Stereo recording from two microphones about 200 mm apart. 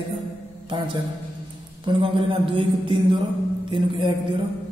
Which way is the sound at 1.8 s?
25° right (ahead or behind).